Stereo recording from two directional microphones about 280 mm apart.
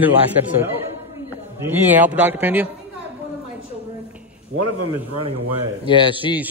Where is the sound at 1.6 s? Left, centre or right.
Centre.